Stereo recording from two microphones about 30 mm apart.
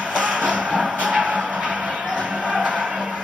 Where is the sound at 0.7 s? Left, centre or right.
Right.